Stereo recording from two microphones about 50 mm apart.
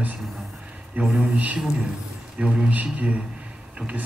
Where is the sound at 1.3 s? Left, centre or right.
Right.